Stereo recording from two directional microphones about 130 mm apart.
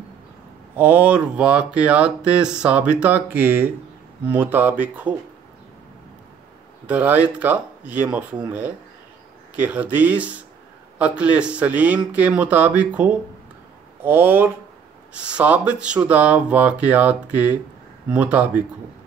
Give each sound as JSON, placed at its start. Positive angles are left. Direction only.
{"t": 0.7, "sound": "speech", "side_deg": -15}
{"t": 6.9, "sound": "speech", "side_deg": -10}